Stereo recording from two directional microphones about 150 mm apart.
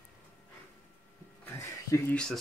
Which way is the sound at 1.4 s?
10° left (ahead or behind).